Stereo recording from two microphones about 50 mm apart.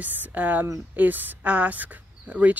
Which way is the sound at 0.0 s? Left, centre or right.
Right.